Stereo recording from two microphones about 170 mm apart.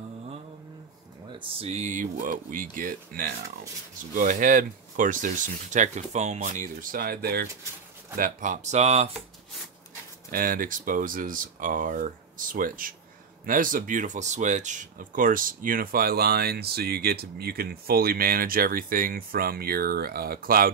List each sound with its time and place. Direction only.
1.3 s speech: 35° right (ahead or behind); by 7.4 s 65° right (ahead or behind)
8.2 s speech: 50° right (ahead or behind)
10.3 s speech: 55° right (ahead or behind)